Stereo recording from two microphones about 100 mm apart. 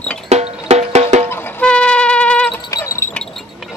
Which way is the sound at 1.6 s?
10° left (ahead or behind).